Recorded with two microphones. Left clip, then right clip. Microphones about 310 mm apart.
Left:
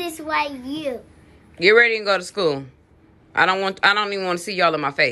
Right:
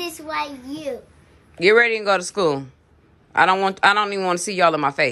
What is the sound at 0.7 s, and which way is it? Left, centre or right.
A child's voice, centre.